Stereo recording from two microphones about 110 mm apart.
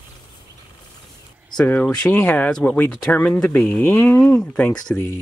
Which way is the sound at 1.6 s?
15° left (ahead or behind).